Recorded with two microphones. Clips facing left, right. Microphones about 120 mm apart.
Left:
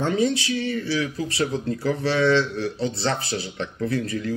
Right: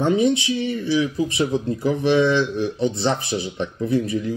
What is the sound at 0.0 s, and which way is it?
Speech, 20° right (ahead or behind).